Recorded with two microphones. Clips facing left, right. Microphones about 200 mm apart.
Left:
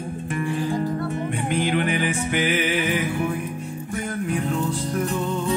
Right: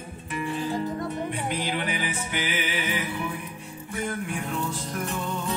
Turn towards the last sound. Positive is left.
turn(degrees=40)  # may be behind; listen again after turning